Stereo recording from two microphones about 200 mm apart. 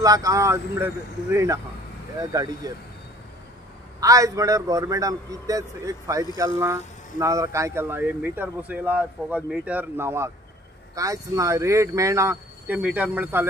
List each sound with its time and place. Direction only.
0.0 s a man's voice: 15° right (ahead or behind)
4.0 s a man's voice: 15° right (ahead or behind)